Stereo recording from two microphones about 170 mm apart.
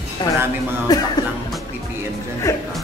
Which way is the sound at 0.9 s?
20° left (ahead or behind).